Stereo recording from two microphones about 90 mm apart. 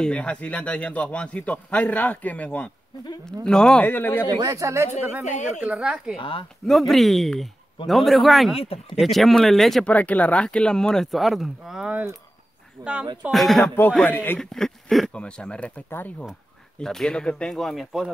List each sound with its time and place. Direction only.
0.0 s a man's voice: 10° left (ahead or behind)
3.8 s speech: 20° left (ahead or behind)
4.3 s speech: 45° right (ahead or behind)
5.0 s speech: 20° right (ahead or behind)
6.1 s speech: 75° left (ahead or behind)
6.6 s a man's voice: centre (ahead or behind)
9.8 s a man's voice: 15° left (ahead or behind); by 11.9 s 5° right (ahead or behind)
12.8 s speech: 40° right (ahead or behind)
13.3 s a man's voice: centre (ahead or behind)
14.0 s speech: 20° left (ahead or behind)
14.4 s a man's voice: 5° left (ahead or behind)
16.8 s a man's voice: 5° left (ahead or behind)